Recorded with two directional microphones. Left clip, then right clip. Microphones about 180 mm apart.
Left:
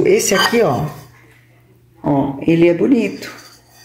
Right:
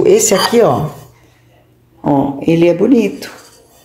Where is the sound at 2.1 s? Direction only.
10° right (ahead or behind).